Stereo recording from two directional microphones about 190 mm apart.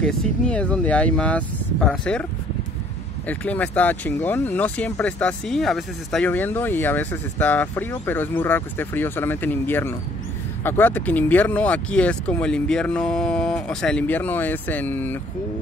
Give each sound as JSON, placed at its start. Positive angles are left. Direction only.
{"t": 0.0, "sound": "speech", "side_deg": 5}
{"t": 3.3, "sound": "speech", "side_deg": 10}